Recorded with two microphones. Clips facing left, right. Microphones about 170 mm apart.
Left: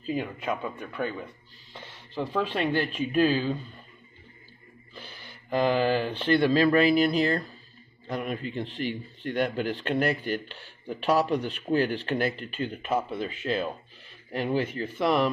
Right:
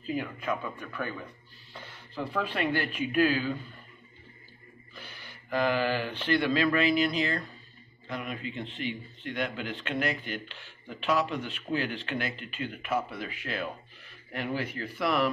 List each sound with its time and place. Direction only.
0.0 s speech: 25° left (ahead or behind)
4.9 s speech: 30° left (ahead or behind)